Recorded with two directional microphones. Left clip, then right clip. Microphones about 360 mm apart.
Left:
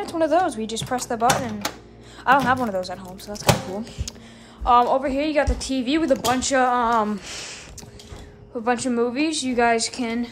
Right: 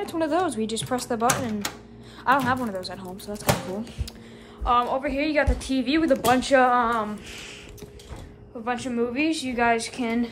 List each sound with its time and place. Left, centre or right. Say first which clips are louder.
0.0 s speech: left 4 dB; centre
2.2 s speech: left 4 dB; centre
4.6 s speech: left 5 dB; centre
8.6 s speech: left 5 dB; centre